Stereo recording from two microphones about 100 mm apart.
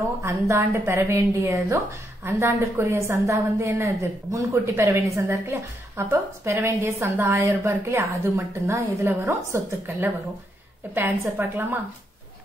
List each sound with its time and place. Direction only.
0.2 s a woman's voice: 30° right (ahead or behind)